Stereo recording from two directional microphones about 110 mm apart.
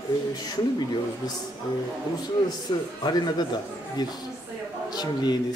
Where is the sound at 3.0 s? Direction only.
40° left (ahead or behind).